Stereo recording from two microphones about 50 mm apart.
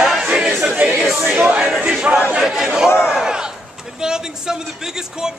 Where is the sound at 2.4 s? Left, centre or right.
Centre.